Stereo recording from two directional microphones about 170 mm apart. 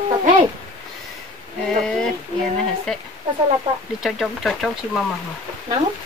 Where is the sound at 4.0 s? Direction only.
Centre (ahead or behind).